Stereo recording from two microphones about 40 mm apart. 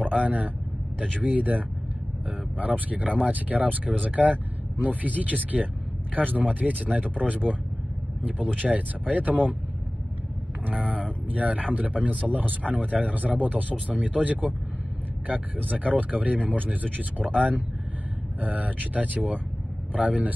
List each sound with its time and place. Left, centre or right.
0.2 s speech: right
2.6 s speech: right
10.7 s vehicle: right
11.2 s speech: right
17.2 s speech: centre
18.4 s speech: right